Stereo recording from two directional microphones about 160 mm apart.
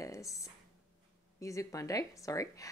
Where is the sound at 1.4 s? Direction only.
20° left (ahead or behind).